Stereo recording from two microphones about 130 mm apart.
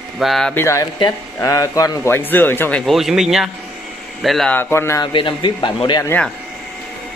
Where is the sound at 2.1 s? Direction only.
15° left (ahead or behind).